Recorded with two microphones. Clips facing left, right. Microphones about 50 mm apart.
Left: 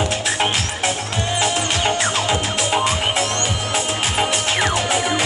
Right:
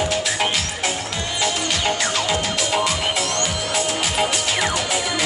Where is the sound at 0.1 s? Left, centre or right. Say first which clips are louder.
Left 1 dB; left.